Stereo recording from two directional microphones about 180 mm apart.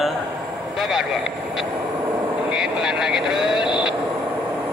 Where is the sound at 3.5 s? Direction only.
25° left (ahead or behind).